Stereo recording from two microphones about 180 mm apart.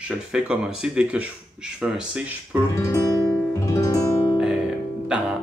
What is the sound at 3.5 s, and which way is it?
Music, 15° left (ahead or behind).